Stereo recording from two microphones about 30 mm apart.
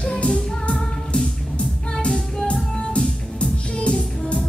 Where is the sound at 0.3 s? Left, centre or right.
Left.